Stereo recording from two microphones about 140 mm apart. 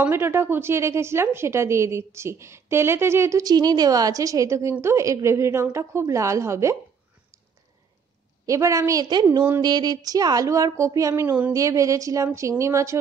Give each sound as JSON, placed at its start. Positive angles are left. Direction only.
{"t": 0.0, "sound": "a woman's voice", "side_deg": -15}
{"t": 8.5, "sound": "a woman's voice", "side_deg": -20}